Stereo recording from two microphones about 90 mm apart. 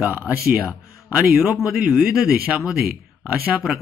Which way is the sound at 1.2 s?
5° right (ahead or behind).